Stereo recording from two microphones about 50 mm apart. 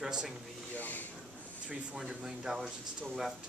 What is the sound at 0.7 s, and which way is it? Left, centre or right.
Speech, left.